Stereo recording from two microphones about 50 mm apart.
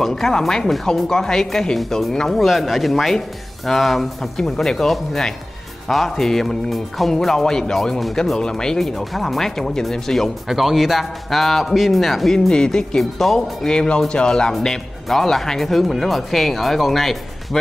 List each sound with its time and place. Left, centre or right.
0.0 s speech: centre
10.5 s speech: centre
13.7 s speech: centre